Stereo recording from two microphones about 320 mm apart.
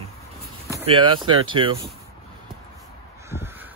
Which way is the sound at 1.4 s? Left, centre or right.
Centre.